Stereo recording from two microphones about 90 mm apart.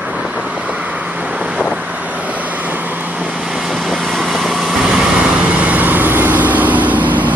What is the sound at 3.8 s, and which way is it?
Vehicle, centre (ahead or behind).